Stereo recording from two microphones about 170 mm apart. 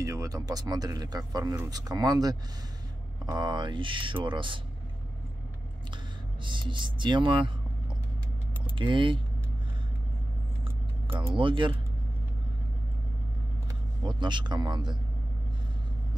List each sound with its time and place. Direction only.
0.0 s speech: 20° right (ahead or behind)
6.4 s speech: 30° right (ahead or behind)
8.7 s speech: 30° right (ahead or behind)
11.3 s speech: 30° right (ahead or behind)
14.0 s speech: 25° right (ahead or behind)